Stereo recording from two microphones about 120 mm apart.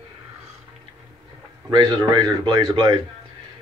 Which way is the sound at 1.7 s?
40° right (ahead or behind).